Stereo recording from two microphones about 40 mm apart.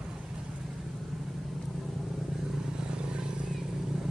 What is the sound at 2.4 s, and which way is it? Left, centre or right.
Vehicle, centre.